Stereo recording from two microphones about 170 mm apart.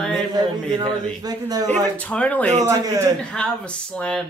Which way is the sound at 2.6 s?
20° right (ahead or behind).